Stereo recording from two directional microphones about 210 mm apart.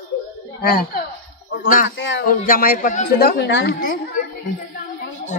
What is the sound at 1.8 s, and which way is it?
Speech, 60° left (ahead or behind).